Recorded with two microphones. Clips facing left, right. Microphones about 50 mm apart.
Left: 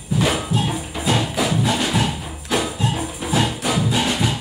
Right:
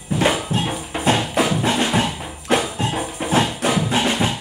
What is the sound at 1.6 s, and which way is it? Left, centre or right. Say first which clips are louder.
Music: right 1 dB; right.